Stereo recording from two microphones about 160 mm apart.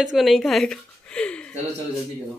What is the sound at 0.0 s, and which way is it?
Speech, centre (ahead or behind).